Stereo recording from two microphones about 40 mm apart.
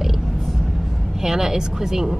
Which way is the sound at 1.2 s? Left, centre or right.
Centre.